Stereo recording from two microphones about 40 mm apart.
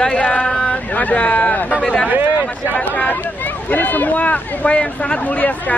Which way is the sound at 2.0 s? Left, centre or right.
Right.